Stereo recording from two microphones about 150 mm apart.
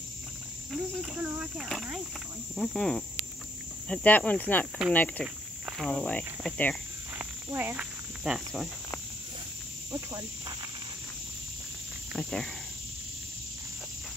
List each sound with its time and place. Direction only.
0.7 s speech: 5° right (ahead or behind)
1.7 s cricket: centre (ahead or behind)
5.2 s a sound: 5° right (ahead or behind)
5.9 s cricket: 10° left (ahead or behind)
7.2 s cricket: 10° right (ahead or behind)
12.1 s speech: centre (ahead or behind)